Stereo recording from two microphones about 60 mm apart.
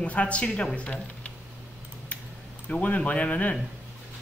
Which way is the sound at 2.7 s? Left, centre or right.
Left.